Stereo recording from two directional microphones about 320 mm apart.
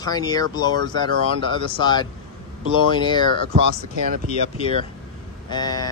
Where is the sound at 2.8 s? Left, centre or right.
Centre.